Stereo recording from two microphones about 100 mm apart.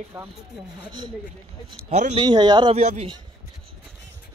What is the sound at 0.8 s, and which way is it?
Speech, 50° right (ahead or behind).